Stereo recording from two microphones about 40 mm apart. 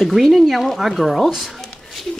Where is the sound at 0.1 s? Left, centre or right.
Centre.